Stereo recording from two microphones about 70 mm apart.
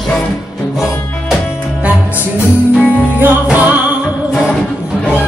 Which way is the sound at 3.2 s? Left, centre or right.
Right.